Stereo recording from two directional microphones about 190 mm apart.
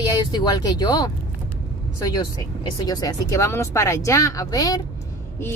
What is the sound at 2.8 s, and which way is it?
Speech, 20° left (ahead or behind).